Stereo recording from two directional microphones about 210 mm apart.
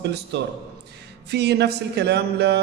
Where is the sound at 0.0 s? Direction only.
55° right (ahead or behind).